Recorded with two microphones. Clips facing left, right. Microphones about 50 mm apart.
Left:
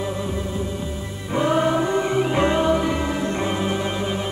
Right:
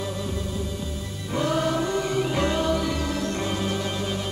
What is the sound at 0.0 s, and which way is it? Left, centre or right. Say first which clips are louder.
Music: left 4 dB; left.